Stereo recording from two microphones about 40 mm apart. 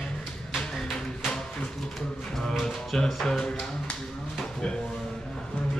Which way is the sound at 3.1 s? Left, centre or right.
Centre.